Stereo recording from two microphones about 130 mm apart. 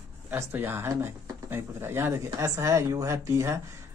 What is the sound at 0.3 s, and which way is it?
Speech, 15° right (ahead or behind).